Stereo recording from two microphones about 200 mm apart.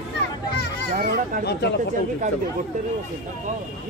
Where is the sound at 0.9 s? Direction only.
45° right (ahead or behind).